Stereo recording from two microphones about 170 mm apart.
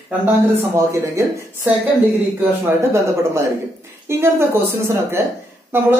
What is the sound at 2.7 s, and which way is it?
A woman's voice, 15° right (ahead or behind).